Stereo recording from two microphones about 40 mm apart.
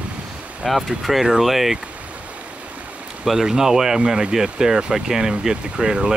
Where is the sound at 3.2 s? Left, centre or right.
Centre.